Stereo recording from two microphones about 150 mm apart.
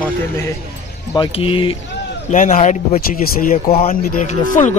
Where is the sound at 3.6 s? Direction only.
40° left (ahead or behind).